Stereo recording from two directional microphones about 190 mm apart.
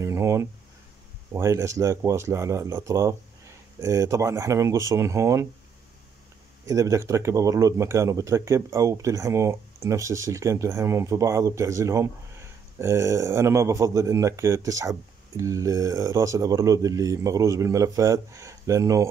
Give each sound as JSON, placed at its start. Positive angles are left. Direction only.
{"t": 0.0, "sound": "a sound", "side_deg": -15}
{"t": 1.3, "sound": "a man's voice", "side_deg": -15}
{"t": 6.6, "sound": "a man's voice", "side_deg": -15}